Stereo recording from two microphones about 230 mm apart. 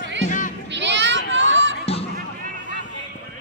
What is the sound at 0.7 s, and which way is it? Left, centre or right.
Children playing, right.